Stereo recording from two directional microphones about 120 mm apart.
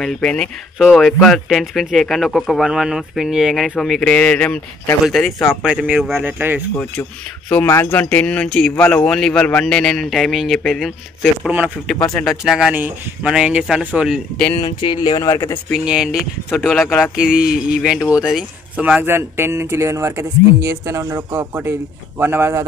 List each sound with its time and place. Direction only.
0.0 s speech: 5° left (ahead or behind)
5.6 s speech: 10° right (ahead or behind)
6.8 s speech: 15° left (ahead or behind)
11.9 s speech: 5° left (ahead or behind)
12.3 s speech: 5° right (ahead or behind)
12.7 s speech: 15° right (ahead or behind)
14.8 s speech: 45° left (ahead or behind)
15.1 s speech: 25° left (ahead or behind)
15.7 s speech: 5° right (ahead or behind); by 22.7 s 20° right (ahead or behind)